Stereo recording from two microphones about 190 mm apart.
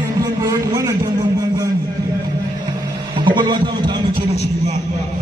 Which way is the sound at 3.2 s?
25° right (ahead or behind).